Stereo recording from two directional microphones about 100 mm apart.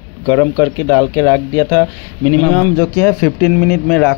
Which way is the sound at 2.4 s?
15° left (ahead or behind).